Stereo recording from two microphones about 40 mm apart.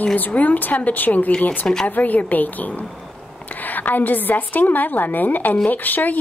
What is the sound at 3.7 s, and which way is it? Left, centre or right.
A woman's voice, left.